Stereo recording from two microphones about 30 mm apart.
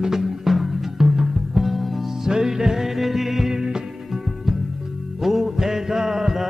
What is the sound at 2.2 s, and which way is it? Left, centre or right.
Music, centre.